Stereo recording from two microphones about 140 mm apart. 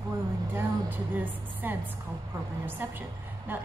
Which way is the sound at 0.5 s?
15° right (ahead or behind).